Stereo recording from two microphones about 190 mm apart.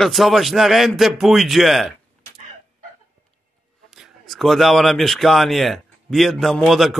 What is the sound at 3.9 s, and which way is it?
Speech, centre (ahead or behind).